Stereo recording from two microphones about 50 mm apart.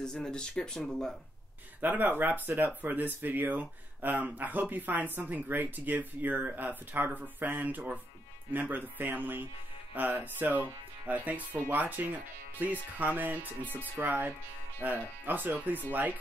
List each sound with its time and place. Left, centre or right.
0.0 s speech: centre
1.8 s speech: right